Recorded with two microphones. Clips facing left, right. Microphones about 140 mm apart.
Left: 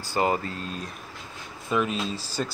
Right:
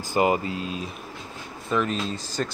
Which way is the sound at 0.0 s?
15° right (ahead or behind).